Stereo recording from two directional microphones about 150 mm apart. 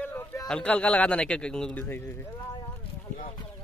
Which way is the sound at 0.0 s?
15° left (ahead or behind).